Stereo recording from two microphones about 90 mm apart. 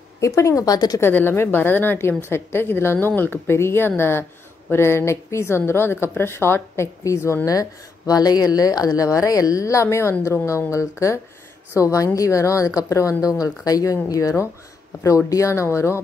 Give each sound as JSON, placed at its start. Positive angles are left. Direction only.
{"t": 0.4, "sound": "speech", "side_deg": 35}
{"t": 1.0, "sound": "a woman's voice", "side_deg": 25}
{"t": 8.1, "sound": "speech", "side_deg": 45}